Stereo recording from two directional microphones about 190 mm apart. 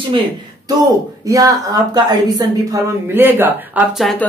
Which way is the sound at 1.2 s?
20° right (ahead or behind).